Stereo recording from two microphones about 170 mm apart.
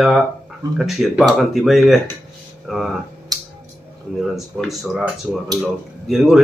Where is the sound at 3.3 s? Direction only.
25° right (ahead or behind).